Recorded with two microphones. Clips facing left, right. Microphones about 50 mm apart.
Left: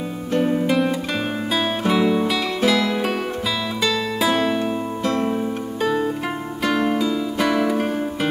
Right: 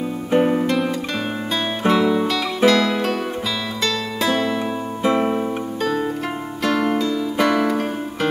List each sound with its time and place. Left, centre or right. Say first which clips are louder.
0.3 s music: right 3 dB; right
0.7 s music: left 1 dB; centre
5.0 s music: right 4 dB; right
5.8 s music: left 2 dB; centre